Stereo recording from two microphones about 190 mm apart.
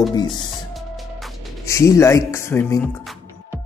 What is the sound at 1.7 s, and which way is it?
Speech, 15° left (ahead or behind).